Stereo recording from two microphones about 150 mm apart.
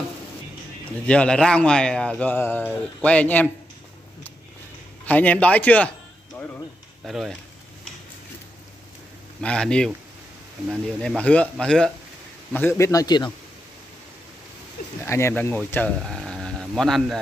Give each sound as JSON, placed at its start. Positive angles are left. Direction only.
{"t": 1.0, "sound": "a man's voice", "side_deg": 5}
{"t": 5.0, "sound": "a man's voice", "side_deg": 10}
{"t": 6.4, "sound": "a sound", "side_deg": 10}
{"t": 7.1, "sound": "speech", "side_deg": 0}
{"t": 9.4, "sound": "speech", "side_deg": 5}
{"t": 12.5, "sound": "a man's voice", "side_deg": 15}
{"t": 15.0, "sound": "speech", "side_deg": 15}